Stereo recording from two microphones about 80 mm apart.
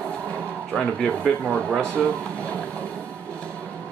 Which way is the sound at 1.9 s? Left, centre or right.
Centre.